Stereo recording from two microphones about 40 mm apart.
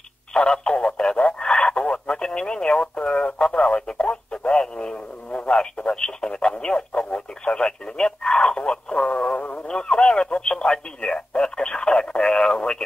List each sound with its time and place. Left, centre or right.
0.3 s radio: left
1.5 s speech: left
9.7 s speech: left